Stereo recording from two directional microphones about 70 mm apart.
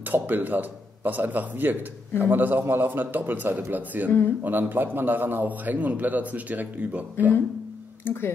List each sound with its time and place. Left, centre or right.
0.1 s speech: right
8.0 s speech: left